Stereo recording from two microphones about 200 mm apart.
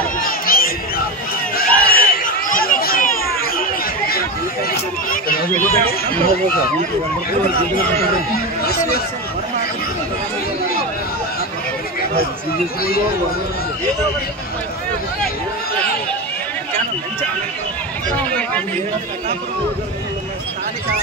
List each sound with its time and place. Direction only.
0.2 s crowd: 45° left (ahead or behind)
1.6 s a sound: 45° left (ahead or behind)
4.6 s a sound: 45° left (ahead or behind)
5.5 s speech: 10° left (ahead or behind)
8.6 s speech: 50° left (ahead or behind)
18.1 s speech: 10° left (ahead or behind)